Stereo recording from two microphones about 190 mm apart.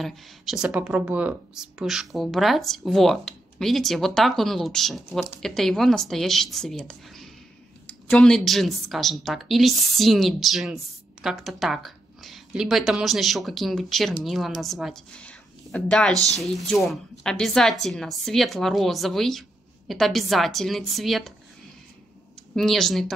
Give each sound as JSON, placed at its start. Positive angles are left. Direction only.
{"t": 0.0, "sound": "speech", "side_deg": 0}
{"t": 22.6, "sound": "speech", "side_deg": 0}